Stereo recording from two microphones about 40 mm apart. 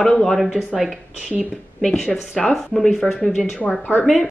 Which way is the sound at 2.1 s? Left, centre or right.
Centre.